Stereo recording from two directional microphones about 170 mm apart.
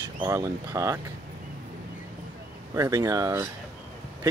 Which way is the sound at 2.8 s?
20° right (ahead or behind).